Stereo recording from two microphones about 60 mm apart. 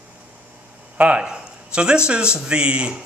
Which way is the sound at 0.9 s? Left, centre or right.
Right.